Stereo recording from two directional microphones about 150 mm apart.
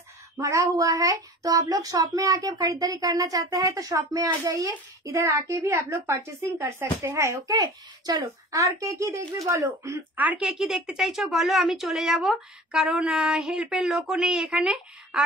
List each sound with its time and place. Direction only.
0.4 s a woman's voice: 20° right (ahead or behind); by 15.2 s 5° right (ahead or behind)